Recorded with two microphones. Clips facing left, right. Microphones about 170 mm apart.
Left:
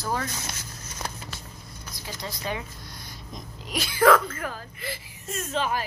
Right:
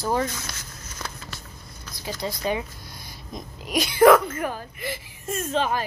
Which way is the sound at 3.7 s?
20° right (ahead or behind).